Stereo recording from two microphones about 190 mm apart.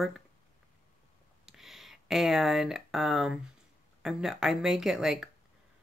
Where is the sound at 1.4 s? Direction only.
Centre (ahead or behind).